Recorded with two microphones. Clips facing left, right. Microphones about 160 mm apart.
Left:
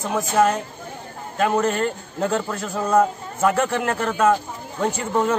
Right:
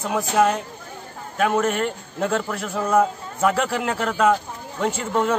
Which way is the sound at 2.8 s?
10° right (ahead or behind).